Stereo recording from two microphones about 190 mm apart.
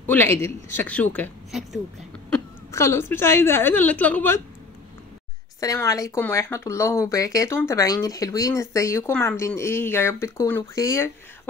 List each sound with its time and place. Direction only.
0.1 s a woman's voice: 10° left (ahead or behind)
2.7 s speech: 15° left (ahead or behind)
5.6 s speech: 20° left (ahead or behind)